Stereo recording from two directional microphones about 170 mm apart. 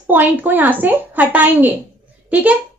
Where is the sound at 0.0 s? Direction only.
10° right (ahead or behind).